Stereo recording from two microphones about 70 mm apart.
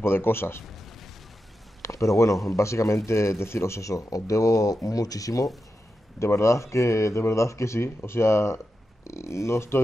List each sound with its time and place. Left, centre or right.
0.0 s a man's voice: left
1.8 s speech: left
6.1 s a man's voice: left